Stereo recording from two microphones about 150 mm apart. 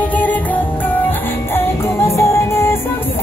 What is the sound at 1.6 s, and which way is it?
Music, 20° left (ahead or behind).